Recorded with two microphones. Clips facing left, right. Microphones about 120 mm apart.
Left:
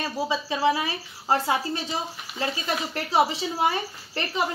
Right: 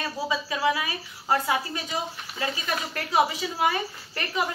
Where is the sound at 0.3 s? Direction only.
30° left (ahead or behind).